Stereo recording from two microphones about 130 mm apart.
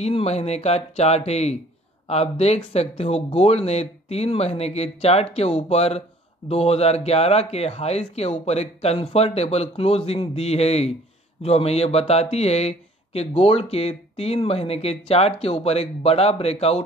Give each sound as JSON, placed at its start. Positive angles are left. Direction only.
{"t": 0.0, "sound": "speech", "side_deg": 55}